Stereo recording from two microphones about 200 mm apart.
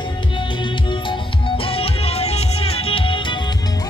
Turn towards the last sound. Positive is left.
turn(degrees=25)  # may be behind; listen again after turning